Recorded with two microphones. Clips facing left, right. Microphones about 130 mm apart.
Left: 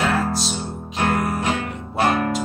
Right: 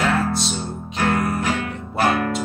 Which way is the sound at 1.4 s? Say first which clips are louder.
Even; 25° left (ahead or behind).